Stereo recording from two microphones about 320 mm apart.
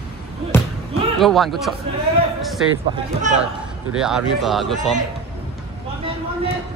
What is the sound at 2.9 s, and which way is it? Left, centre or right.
Speech, centre.